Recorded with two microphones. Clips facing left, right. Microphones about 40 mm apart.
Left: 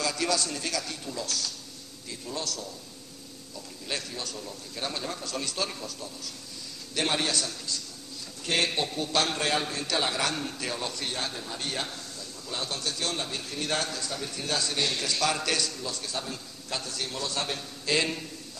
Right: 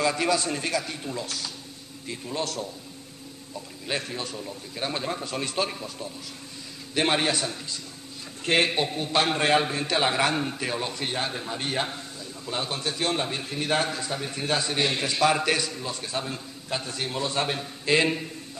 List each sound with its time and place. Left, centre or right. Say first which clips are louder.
0.0 s a man's voice: right 4 dB; right
3.8 s a man's voice: right 4 dB; right